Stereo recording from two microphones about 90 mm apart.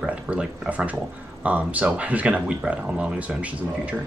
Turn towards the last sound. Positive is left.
turn(degrees=-15)  # may be behind; listen again after turning